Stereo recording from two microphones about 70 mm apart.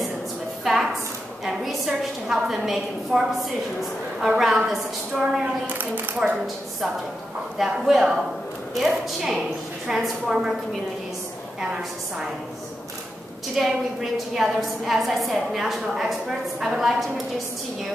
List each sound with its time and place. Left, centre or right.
0.7 s a sound: centre
4.2 s a woman's voice: centre
5.7 s a woman's voice: right
7.8 s a woman's voice: centre
13.6 s a woman's voice: centre